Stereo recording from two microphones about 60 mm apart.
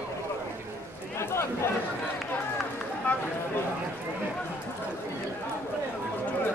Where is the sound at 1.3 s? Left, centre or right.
Left.